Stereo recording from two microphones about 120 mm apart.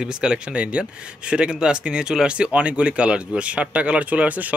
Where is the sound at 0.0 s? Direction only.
5° right (ahead or behind).